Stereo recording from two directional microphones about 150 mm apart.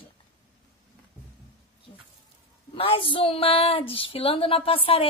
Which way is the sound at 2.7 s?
35° left (ahead or behind).